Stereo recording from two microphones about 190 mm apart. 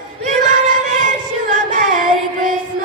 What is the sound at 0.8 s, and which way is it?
Music, 45° right (ahead or behind).